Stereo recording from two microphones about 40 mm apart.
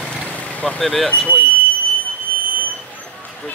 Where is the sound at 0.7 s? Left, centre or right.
Centre.